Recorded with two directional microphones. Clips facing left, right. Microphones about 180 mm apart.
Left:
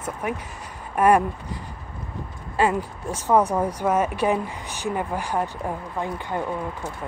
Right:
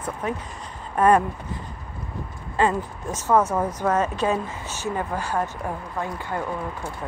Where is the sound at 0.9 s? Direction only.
10° left (ahead or behind).